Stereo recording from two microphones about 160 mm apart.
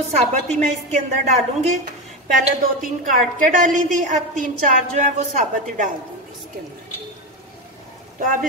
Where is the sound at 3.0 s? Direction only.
55° right (ahead or behind).